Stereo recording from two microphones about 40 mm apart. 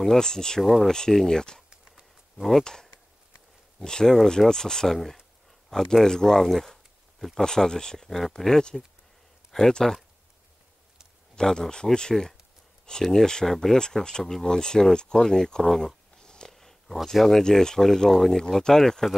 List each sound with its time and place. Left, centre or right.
0.0 s speech: centre
0.6 s speech: centre
0.9 s speech: centre
2.3 s speech: centre
2.6 s speech: centre
11.3 s speech: centre
16.2 s a sound: centre
16.5 s speech: centre